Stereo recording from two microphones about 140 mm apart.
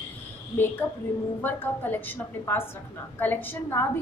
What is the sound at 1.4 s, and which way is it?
A woman's voice, 15° left (ahead or behind).